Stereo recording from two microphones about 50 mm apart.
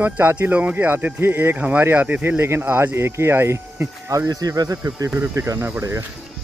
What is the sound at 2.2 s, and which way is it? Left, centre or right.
Speech, right.